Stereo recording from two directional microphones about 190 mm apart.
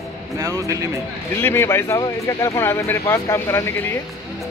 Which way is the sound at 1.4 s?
15° left (ahead or behind).